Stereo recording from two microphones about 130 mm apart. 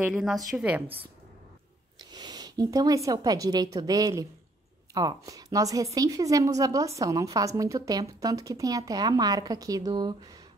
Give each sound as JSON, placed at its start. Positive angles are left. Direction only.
{"t": 0.1, "sound": "a woman's voice", "side_deg": 0}
{"t": 2.0, "sound": "a woman's voice", "side_deg": -35}